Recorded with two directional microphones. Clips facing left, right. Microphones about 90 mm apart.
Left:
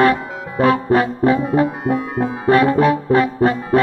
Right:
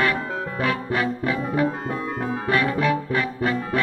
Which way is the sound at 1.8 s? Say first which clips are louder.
Left 7 dB; 15° left (ahead or behind).